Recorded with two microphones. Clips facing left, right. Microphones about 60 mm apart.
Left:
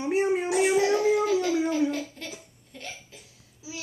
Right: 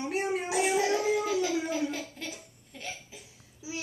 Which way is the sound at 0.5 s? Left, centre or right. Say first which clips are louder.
Left 2 dB; centre.